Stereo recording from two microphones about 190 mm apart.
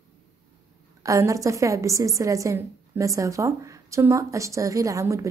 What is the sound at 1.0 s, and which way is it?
A woman's voice, 15° right (ahead or behind).